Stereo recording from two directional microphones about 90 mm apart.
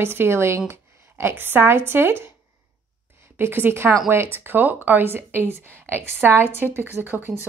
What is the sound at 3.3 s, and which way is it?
A woman's voice, 25° right (ahead or behind).